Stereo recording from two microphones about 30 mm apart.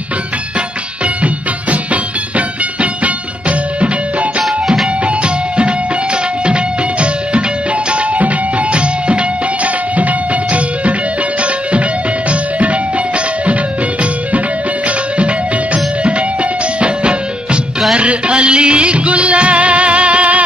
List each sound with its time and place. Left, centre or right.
1.0 s music: right
4.5 s music: centre
5.2 s music: right
14.9 s music: right